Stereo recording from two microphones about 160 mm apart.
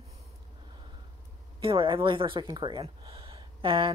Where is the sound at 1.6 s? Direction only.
35° right (ahead or behind).